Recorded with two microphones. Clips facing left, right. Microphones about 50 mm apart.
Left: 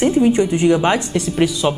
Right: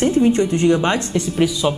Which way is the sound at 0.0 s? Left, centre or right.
Centre.